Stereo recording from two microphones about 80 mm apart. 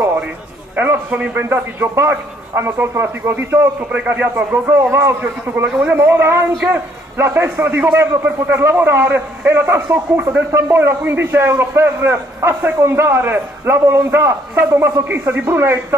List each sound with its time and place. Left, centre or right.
0.7 s a man's voice: right
1.5 s a man's voice: right
3.9 s a man's voice: centre